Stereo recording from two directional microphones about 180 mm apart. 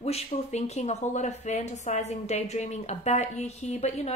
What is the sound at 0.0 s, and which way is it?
Speech, 35° left (ahead or behind).